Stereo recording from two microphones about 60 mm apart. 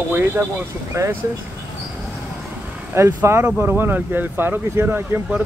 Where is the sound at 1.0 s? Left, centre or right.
Right.